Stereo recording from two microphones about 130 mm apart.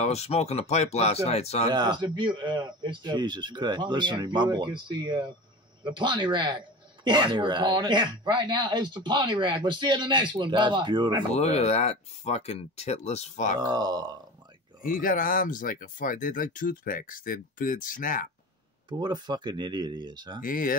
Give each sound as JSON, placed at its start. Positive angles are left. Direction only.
{"t": 0.0, "sound": "speech", "side_deg": 55}
{"t": 1.7, "sound": "speech", "side_deg": -35}
{"t": 11.3, "sound": "speech", "side_deg": 55}
{"t": 13.7, "sound": "speech", "side_deg": -35}
{"t": 14.9, "sound": "speech", "side_deg": 90}
{"t": 18.9, "sound": "speech", "side_deg": -35}
{"t": 20.4, "sound": "speech", "side_deg": 90}